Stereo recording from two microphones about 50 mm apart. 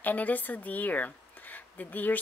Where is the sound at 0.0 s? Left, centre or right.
Left.